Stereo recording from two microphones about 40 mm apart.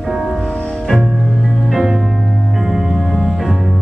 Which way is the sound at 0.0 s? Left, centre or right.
Centre.